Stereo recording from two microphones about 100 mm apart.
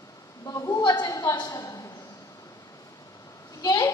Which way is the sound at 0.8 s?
40° left (ahead or behind).